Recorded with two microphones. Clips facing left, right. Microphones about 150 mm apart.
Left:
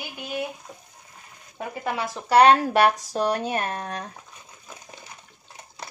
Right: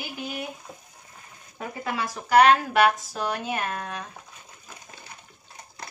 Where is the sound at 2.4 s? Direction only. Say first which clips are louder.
Left 2 dB; 35° left (ahead or behind).